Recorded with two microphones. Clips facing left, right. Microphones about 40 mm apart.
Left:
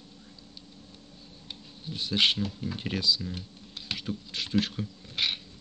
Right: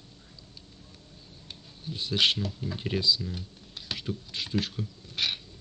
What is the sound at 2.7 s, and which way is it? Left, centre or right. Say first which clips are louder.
Speech: even; centre.